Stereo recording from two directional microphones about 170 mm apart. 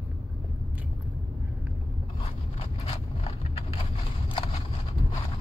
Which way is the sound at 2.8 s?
35° left (ahead or behind).